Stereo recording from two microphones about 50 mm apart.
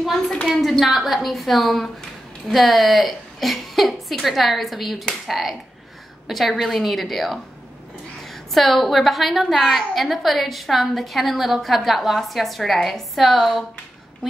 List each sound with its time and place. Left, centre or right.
0.6 s a woman's voice: centre